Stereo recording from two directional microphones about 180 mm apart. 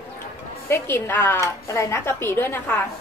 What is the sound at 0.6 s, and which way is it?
A woman's voice, 15° left (ahead or behind).